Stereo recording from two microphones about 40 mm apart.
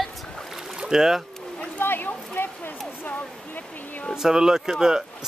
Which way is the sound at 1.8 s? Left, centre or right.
Left.